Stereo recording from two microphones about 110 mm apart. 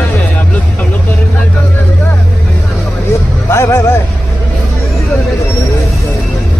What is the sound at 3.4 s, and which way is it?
Music, 25° left (ahead or behind).